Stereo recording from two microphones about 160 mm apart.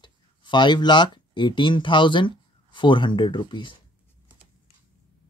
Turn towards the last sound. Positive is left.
turn(degrees=30)  # may be behind; listen again after turning